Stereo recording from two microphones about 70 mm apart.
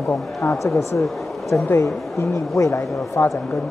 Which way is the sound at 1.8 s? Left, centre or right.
Left.